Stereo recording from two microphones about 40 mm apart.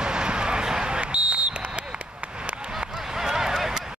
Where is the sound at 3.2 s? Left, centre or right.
Centre.